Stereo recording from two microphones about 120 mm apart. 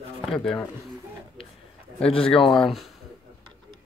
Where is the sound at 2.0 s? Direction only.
50° left (ahead or behind).